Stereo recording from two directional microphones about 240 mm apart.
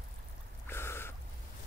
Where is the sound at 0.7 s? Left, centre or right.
Centre.